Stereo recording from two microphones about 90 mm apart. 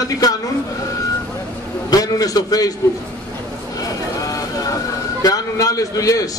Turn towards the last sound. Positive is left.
turn(degrees=40)  # may be behind; listen again after turning